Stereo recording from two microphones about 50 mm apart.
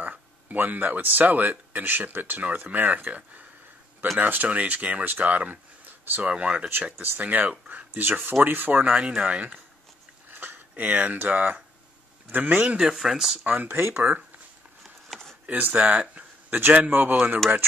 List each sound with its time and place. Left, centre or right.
0.0 s speech: right
4.2 s speech: right
6.2 s speech: right
6.8 s speech: right
12.6 s speech: centre
12.9 s speech: centre
13.5 s speech: right
14.8 s a sound: centre
15.4 s speech: right
16.0 s a sound: right
16.9 s speech: right